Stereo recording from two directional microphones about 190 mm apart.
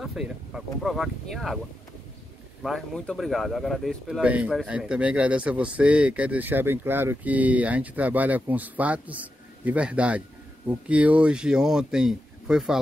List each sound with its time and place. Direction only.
0.0 s speech: 5° right (ahead or behind)
2.6 s a man's voice: centre (ahead or behind)